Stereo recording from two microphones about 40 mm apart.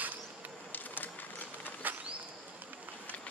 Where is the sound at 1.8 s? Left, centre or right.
Right.